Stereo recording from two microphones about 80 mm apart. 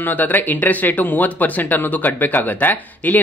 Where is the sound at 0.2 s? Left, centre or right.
Left.